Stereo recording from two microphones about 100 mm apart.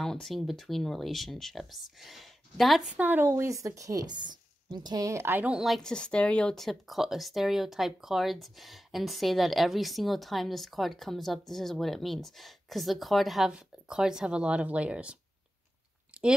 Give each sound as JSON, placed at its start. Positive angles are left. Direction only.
{"t": 0.0, "sound": "speech", "side_deg": 5}
{"t": 3.0, "sound": "a woman's voice", "side_deg": -20}
{"t": 5.6, "sound": "speech", "side_deg": 5}
{"t": 16.1, "sound": "chewing", "side_deg": -10}